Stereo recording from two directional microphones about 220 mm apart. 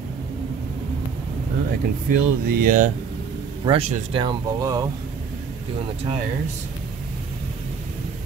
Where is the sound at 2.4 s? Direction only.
40° right (ahead or behind); by 4.8 s 15° right (ahead or behind).